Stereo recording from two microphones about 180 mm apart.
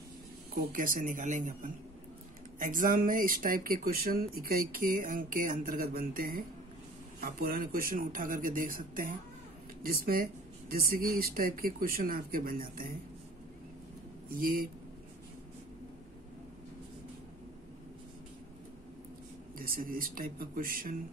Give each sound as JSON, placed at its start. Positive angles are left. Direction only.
{"t": 0.6, "sound": "speech", "side_deg": -50}
{"t": 14.3, "sound": "speech", "side_deg": -55}
{"t": 19.6, "sound": "speech", "side_deg": -50}